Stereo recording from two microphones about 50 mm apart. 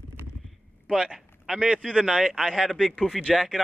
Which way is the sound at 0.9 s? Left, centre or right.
Centre.